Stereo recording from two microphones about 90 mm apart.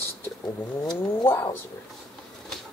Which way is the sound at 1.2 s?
25° left (ahead or behind).